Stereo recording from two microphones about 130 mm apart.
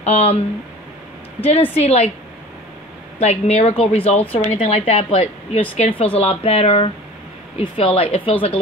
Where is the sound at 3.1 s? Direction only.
55° left (ahead or behind).